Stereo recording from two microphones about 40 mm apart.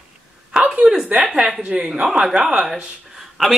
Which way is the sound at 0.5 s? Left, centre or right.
Right.